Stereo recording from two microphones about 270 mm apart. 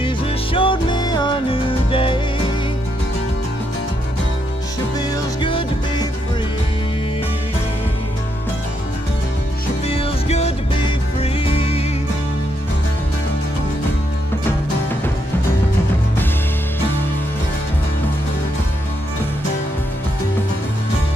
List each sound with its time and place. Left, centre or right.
0.0 s music: centre
5.1 s music: centre
9.8 s music: left